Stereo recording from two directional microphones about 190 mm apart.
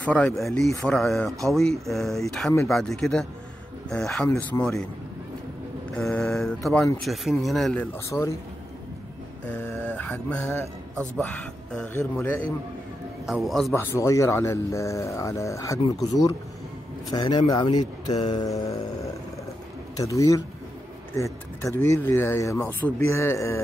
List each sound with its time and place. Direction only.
0.0 s speech: 5° left (ahead or behind)
5.9 s speech: 5° left (ahead or behind)
8.1 s speech: 15° left (ahead or behind)
9.9 s speech: 10° left (ahead or behind)
13.7 s speech: 15° left (ahead or behind)
20.0 s speech: 15° left (ahead or behind)